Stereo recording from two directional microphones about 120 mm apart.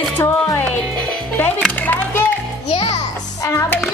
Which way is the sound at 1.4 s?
10° left (ahead or behind).